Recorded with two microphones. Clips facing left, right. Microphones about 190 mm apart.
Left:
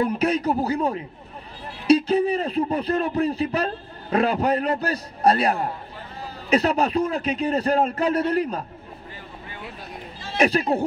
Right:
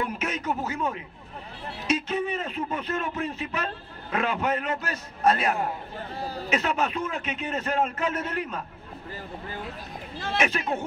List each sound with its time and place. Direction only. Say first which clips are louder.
0.0 s a man's voice: left 8 dB; 35° left (ahead or behind)
10.3 s a man's voice: left 7 dB; 35° left (ahead or behind)